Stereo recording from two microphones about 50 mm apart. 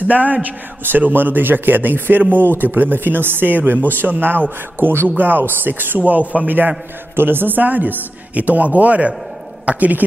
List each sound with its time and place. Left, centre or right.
0.0 s a woman's voice: right